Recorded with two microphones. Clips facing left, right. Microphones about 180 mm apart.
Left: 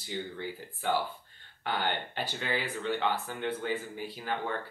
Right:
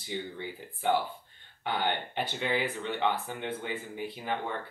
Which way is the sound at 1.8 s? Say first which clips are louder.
Right 2 dB; 20° right (ahead or behind).